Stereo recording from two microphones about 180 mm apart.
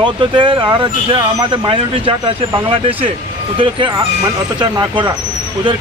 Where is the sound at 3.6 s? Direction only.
25° right (ahead or behind).